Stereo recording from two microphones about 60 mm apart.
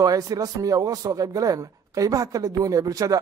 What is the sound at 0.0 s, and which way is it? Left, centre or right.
Speech, right.